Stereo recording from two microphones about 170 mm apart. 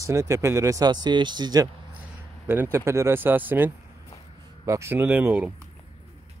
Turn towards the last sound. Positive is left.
turn(degrees=-10)  # may be behind; listen again after turning